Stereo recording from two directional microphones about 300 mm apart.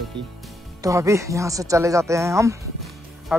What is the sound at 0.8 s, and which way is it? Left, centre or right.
Speech, centre.